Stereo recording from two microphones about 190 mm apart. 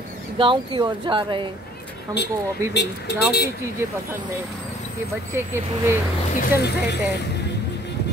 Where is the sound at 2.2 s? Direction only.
65° left (ahead or behind).